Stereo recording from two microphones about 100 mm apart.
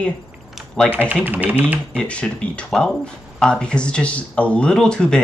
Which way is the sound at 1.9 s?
10° left (ahead or behind).